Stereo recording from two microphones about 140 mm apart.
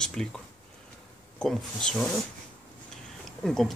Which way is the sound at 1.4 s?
5° left (ahead or behind).